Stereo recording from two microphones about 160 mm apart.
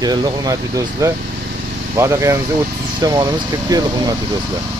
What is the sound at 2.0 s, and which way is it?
Speech, 20° right (ahead or behind).